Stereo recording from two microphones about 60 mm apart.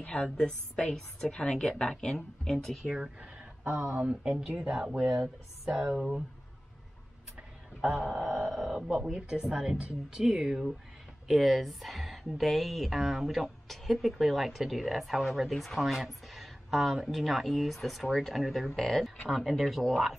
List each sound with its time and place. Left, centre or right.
0.0 s speech: centre
3.0 s a sound: centre
3.7 s speech: right
4.0 s speech: centre
7.8 s a woman's voice: centre